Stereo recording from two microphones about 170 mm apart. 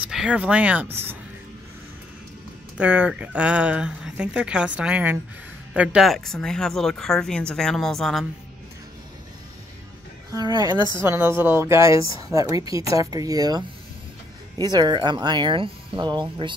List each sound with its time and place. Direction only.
0.1 s speech: 5° right (ahead or behind)
2.8 s speech: 10° right (ahead or behind)
10.3 s speech: 25° right (ahead or behind)